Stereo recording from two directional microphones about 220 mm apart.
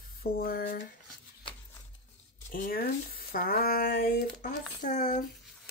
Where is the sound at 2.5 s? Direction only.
40° left (ahead or behind).